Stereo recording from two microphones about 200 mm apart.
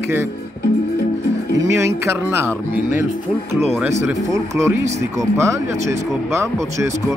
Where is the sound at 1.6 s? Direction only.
15° right (ahead or behind).